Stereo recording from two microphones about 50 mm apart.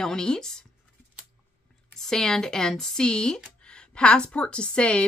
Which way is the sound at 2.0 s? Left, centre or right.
Centre.